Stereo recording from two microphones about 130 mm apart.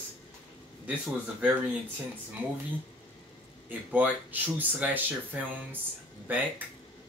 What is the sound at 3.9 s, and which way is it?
Speech, 15° right (ahead or behind).